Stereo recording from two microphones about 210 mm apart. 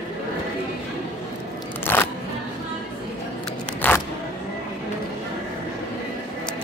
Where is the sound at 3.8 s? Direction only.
10° left (ahead or behind).